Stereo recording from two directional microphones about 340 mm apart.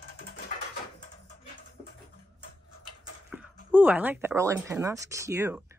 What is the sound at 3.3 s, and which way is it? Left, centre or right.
Speech, centre.